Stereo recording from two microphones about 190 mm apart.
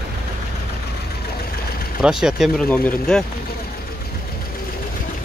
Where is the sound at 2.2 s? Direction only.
Centre (ahead or behind).